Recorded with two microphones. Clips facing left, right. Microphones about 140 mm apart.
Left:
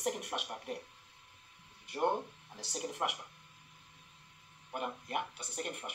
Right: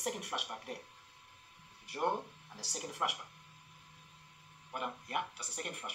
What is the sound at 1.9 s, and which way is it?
Speech, 20° left (ahead or behind).